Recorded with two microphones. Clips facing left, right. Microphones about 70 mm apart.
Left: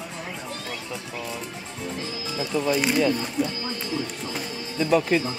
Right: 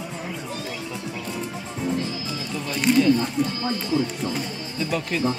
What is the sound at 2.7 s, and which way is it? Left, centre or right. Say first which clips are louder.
Speech: right 5 dB; centre.